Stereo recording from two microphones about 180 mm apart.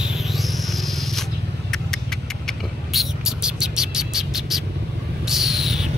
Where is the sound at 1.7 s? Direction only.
5° left (ahead or behind).